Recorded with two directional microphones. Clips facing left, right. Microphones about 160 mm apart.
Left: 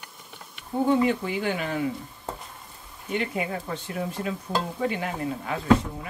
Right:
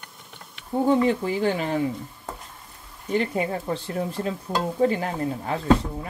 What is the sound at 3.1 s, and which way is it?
Speech, 35° right (ahead or behind).